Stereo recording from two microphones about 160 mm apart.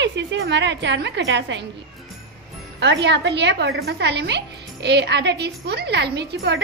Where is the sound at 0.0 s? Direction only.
90° right.